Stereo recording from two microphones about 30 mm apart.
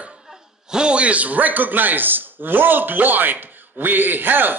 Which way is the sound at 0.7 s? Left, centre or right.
Right.